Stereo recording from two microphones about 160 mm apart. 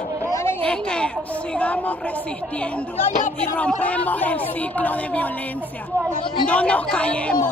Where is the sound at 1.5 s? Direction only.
10° left (ahead or behind).